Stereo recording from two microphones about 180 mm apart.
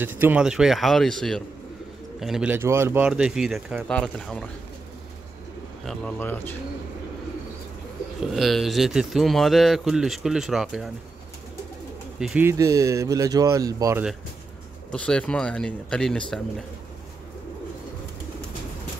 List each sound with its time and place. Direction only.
0.0 s speech: 10° right (ahead or behind)
5.9 s speech: 10° left (ahead or behind)
8.2 s speech: centre (ahead or behind)
12.2 s speech: 5° right (ahead or behind)
12.4 s speech: 15° right (ahead or behind)
14.9 s speech: 5° left (ahead or behind)